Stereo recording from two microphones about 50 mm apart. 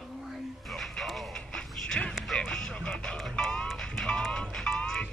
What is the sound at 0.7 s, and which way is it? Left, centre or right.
Music, centre.